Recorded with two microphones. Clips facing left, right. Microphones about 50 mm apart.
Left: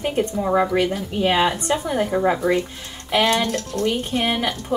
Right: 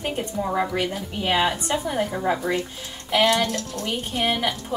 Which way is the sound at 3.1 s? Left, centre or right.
Left.